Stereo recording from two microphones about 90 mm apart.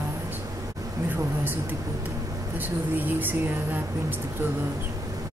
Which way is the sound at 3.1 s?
20° right (ahead or behind).